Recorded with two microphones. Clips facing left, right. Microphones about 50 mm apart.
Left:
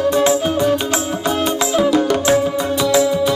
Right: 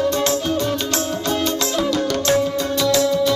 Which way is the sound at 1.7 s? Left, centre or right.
Centre.